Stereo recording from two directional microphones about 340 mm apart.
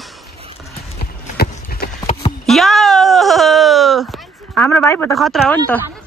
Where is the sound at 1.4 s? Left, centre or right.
Left.